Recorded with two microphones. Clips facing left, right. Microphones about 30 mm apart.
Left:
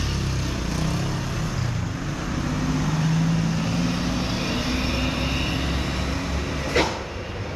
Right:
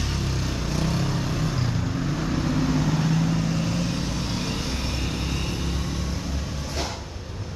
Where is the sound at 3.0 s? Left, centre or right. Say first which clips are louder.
Left 1 dB; centre; by 5.7 s left.